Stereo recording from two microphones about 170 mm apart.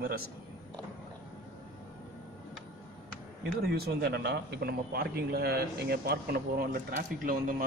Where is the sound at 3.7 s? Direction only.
70° right (ahead or behind).